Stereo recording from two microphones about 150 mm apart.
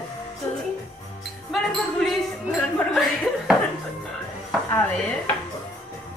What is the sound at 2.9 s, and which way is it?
Chuckle, centre (ahead or behind).